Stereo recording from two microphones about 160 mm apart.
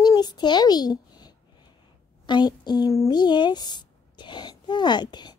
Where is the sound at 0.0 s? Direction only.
25° left (ahead or behind).